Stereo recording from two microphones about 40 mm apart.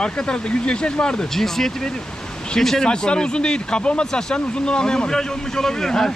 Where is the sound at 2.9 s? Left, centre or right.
Left.